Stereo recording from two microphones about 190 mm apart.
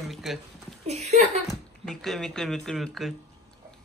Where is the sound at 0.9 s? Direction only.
35° right (ahead or behind).